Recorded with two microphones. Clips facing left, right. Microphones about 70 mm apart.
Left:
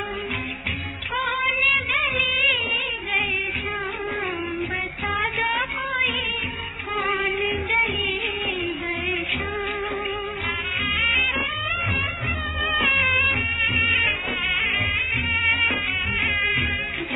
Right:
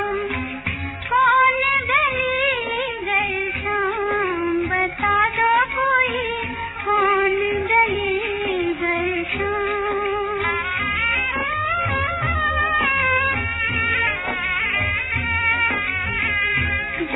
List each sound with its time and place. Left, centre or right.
1.1 s child singing: right
3.7 s music: right